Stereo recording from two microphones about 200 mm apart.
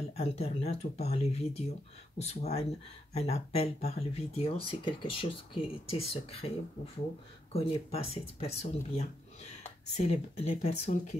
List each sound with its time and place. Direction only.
0.1 s speech: 30° left (ahead or behind)